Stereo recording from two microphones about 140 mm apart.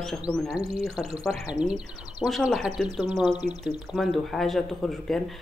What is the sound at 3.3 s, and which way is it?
Speech, 50° right (ahead or behind).